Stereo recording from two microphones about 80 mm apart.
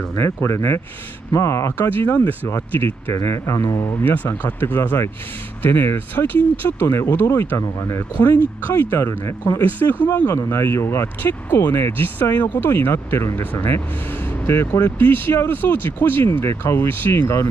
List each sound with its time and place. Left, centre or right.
0.1 s speech: left
3.6 s speech: left
4.0 s speech: left